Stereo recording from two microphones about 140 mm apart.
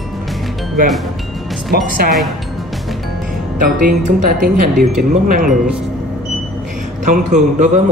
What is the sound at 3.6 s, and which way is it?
Speech, 75° right (ahead or behind).